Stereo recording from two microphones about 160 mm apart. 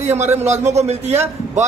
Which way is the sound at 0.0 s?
45° right (ahead or behind).